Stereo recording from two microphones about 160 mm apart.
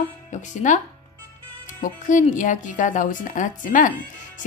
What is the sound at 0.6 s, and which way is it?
Speech, 50° left (ahead or behind).